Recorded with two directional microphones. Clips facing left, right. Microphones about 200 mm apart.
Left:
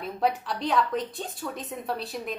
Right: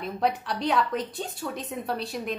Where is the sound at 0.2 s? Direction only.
Centre (ahead or behind).